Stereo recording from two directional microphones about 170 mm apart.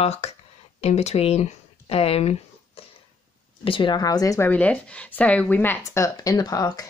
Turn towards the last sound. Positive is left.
turn(degrees=20)  # may be behind; listen again after turning